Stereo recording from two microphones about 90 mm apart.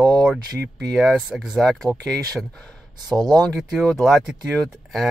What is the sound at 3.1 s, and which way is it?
Speech, 50° right (ahead or behind).